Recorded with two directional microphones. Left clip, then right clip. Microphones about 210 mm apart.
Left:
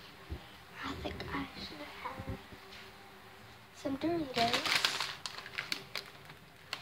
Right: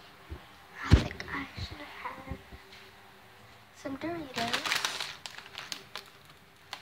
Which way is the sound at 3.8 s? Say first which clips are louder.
Left 2 dB; 10° left (ahead or behind).